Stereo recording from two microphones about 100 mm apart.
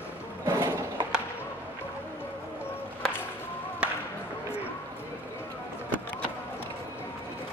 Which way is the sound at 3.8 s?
10° right (ahead or behind).